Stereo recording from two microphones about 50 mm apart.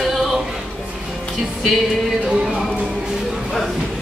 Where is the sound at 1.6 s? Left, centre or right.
Centre.